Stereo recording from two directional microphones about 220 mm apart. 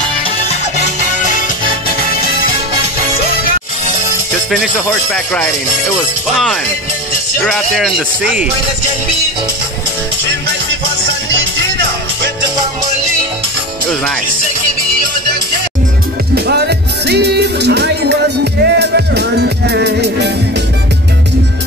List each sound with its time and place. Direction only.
4.5 s speech: centre (ahead or behind)
16.3 s music: 50° right (ahead or behind)